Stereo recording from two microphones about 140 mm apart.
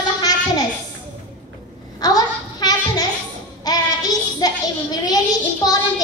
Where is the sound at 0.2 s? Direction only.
25° left (ahead or behind).